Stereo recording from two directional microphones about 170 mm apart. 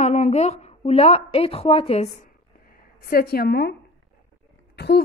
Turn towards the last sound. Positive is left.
turn(degrees=75)  # may be behind; listen again after turning